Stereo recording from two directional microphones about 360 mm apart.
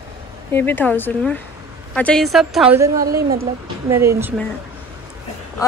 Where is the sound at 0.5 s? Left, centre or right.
Centre.